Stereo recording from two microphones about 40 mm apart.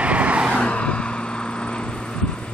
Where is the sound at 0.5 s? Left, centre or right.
Left.